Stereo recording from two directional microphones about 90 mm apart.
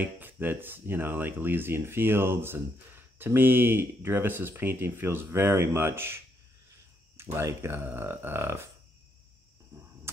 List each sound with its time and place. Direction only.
0.0 s speech: 20° right (ahead or behind)